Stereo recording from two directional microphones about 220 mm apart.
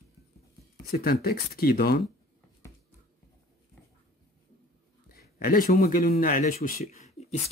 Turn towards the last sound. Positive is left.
turn(degrees=30)  # may be behind; listen again after turning